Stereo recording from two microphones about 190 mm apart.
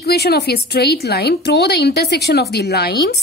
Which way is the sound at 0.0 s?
55° left (ahead or behind).